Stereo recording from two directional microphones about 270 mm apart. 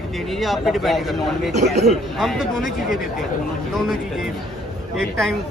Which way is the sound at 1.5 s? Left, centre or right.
Right.